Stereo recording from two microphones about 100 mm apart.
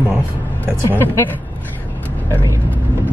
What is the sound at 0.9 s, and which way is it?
Speech, 20° left (ahead or behind).